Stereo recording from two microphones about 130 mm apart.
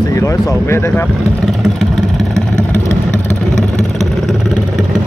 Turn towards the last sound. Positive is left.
turn(degrees=0)  # may be behind; listen again after turning